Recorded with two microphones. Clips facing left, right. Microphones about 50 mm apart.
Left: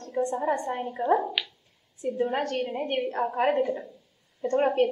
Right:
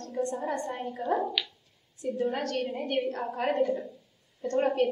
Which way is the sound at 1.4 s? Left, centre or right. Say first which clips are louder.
Left 2 dB; centre.